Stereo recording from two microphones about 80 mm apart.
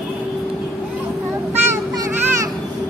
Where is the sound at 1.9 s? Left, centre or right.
Right.